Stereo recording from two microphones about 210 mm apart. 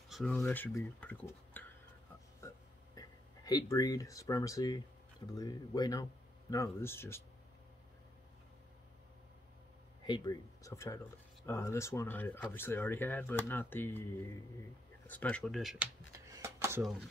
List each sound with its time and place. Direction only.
0.1 s speech: 5° left (ahead or behind)
2.4 s a sound: 15° left (ahead or behind)
5.3 s speech: 20° left (ahead or behind)
10.0 s speech: 20° left (ahead or behind)
15.0 s speech: 5° left (ahead or behind)
16.1 s a sound: 15° right (ahead or behind)